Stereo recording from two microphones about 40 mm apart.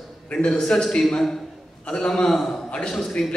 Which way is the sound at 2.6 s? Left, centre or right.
Left.